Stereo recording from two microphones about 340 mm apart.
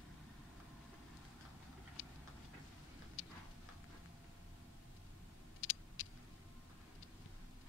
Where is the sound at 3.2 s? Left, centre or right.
Left.